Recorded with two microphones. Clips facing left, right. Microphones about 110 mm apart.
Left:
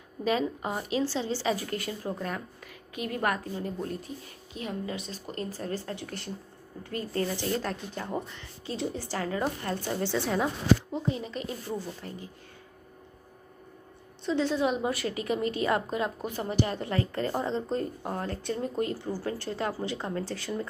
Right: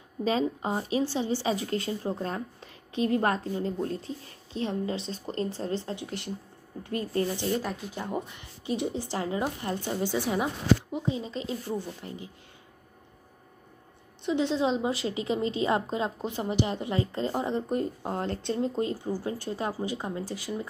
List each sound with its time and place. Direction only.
0.2 s a woman's voice: 30° right (ahead or behind)
7.6 s speech: 10° right (ahead or behind)
14.2 s a woman's voice: 20° right (ahead or behind)